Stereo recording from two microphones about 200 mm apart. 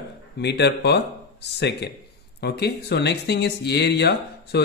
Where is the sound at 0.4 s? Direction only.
55° left (ahead or behind).